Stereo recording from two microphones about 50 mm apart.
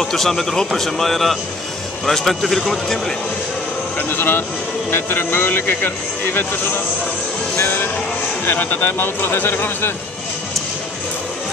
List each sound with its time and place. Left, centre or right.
0.0 s speech: centre
4.1 s speech: left
7.5 s speech: left